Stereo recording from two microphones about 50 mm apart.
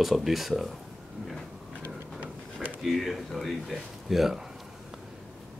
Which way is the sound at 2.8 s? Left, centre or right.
Centre.